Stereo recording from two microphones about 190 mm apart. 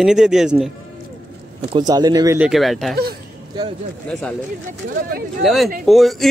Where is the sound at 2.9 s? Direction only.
55° right (ahead or behind).